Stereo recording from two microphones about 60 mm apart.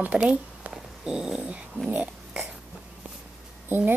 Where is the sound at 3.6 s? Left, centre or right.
Right.